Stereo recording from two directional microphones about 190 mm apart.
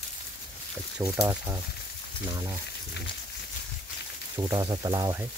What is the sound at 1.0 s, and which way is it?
Speech, 15° right (ahead or behind).